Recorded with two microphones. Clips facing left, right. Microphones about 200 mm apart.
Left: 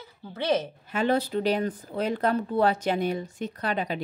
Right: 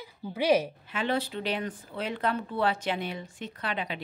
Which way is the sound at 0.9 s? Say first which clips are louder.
Left 6 dB; 45° left (ahead or behind).